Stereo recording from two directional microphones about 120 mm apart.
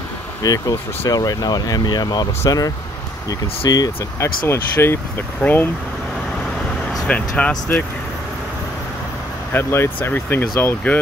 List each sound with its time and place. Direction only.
0.4 s speech: 30° left (ahead or behind); by 5.7 s 15° left (ahead or behind)
7.1 s speech: 10° left (ahead or behind)
9.5 s speech: 20° left (ahead or behind)